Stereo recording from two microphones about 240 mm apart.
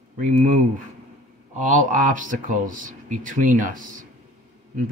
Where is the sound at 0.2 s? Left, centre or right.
Right.